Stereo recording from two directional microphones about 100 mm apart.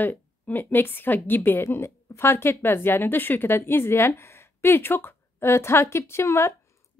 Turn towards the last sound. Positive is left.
turn(degrees=30)  # may be behind; listen again after turning